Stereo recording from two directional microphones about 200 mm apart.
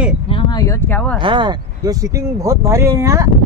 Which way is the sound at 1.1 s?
25° right (ahead or behind).